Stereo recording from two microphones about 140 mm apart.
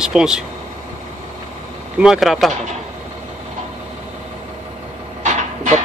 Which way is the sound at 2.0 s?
Centre (ahead or behind).